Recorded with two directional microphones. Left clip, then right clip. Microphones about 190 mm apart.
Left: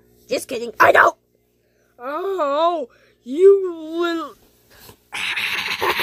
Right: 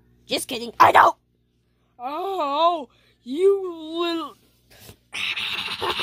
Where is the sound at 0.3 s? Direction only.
25° right (ahead or behind).